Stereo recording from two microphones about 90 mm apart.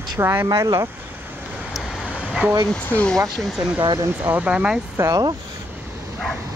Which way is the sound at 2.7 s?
20° left (ahead or behind).